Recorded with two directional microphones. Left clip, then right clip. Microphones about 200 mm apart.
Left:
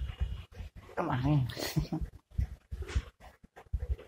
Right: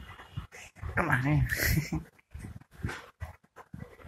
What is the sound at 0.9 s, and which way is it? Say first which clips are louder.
Speech: right 5 dB; 5° left (ahead or behind).